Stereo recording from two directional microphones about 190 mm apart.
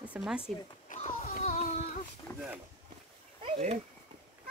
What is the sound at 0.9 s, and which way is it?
Music, 45° left (ahead or behind).